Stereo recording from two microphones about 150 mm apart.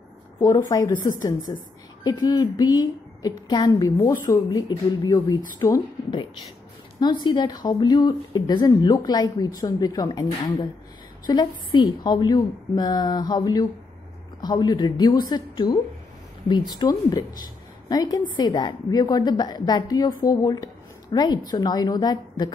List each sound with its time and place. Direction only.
0.4 s speech: 25° left (ahead or behind)